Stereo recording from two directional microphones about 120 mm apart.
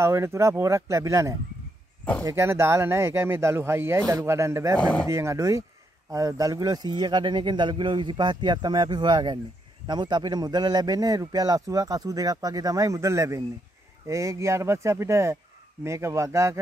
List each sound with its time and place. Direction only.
0.0 s speech: 25° right (ahead or behind)
4.7 s speech: 10° left (ahead or behind)
5.0 s a man's voice: 25° right (ahead or behind)